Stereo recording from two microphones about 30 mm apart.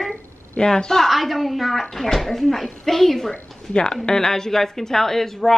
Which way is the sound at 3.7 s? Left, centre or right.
Left.